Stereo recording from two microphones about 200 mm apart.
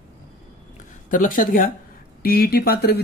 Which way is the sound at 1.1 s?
40° left (ahead or behind).